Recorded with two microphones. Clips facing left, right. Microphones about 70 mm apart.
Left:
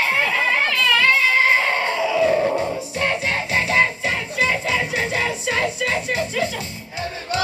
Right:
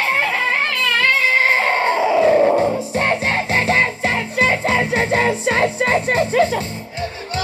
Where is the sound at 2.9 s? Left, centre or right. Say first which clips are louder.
Right 4 dB; right.